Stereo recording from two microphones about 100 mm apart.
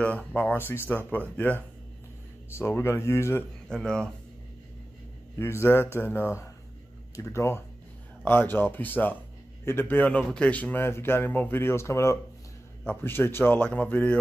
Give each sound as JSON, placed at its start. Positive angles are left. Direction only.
{"t": 0.0, "sound": "a man's voice", "side_deg": 10}
{"t": 3.6, "sound": "speech", "side_deg": 5}
{"t": 5.4, "sound": "a man's voice", "side_deg": 25}